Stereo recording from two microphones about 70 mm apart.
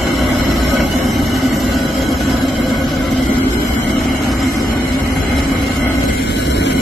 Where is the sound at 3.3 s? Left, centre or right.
Left.